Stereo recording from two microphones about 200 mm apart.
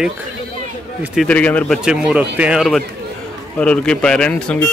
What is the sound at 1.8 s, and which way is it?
Speech, 5° right (ahead or behind).